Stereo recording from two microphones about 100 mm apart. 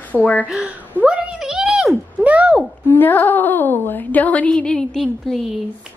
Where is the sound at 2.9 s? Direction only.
20° left (ahead or behind); by 5.4 s centre (ahead or behind).